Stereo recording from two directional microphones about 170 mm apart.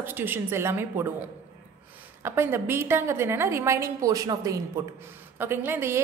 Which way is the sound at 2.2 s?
15° right (ahead or behind).